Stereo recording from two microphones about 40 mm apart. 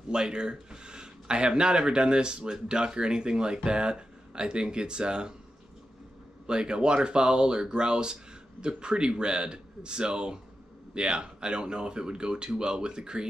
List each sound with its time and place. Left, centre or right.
0.1 s speech: right
6.4 s speech: right